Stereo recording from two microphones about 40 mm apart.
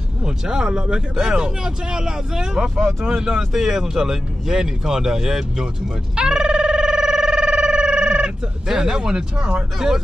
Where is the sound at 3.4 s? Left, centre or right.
Centre.